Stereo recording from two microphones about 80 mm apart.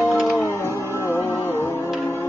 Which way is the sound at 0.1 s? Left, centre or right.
Centre.